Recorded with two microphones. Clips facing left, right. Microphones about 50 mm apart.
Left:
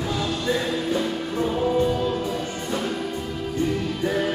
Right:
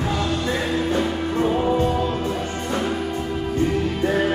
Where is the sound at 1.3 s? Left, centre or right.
Right.